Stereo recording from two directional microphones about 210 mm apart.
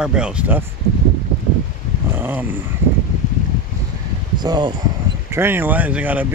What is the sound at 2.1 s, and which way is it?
Dog, 10° right (ahead or behind).